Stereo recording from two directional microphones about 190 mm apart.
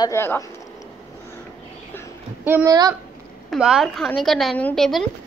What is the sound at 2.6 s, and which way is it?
Speech, 20° right (ahead or behind).